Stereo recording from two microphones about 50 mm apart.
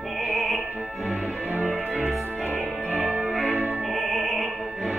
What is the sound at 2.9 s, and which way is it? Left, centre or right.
Music, right.